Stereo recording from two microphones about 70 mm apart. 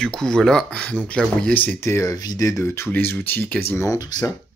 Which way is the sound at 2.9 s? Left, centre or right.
Left.